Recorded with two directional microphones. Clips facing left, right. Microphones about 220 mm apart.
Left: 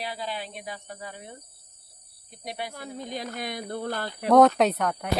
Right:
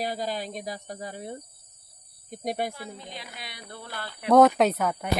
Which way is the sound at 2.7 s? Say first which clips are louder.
Left 5 dB; 45° left (ahead or behind).